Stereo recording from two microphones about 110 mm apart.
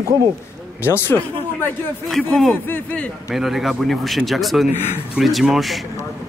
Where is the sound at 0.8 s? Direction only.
20° left (ahead or behind).